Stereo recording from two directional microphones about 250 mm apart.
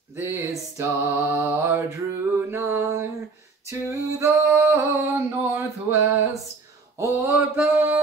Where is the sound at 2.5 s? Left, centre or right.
Centre.